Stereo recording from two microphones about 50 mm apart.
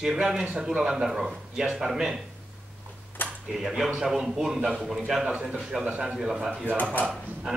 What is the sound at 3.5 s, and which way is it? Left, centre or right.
A man's voice, centre.